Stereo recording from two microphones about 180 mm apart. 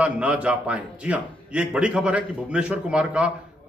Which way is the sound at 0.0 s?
5° right (ahead or behind).